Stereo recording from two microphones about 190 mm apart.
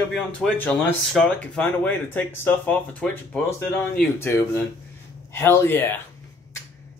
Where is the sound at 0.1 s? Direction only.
5° left (ahead or behind).